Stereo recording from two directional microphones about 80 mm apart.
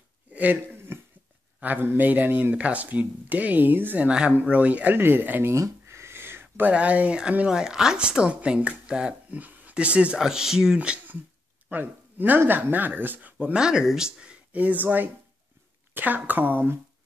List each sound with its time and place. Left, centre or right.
0.3 s a sound: right
1.6 s speech: right
5.5 s a sound: right
6.7 s a woman's voice: centre
11.7 s speech: right
13.4 s a woman's voice: centre